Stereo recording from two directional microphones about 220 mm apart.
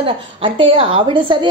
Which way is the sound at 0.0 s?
25° right (ahead or behind).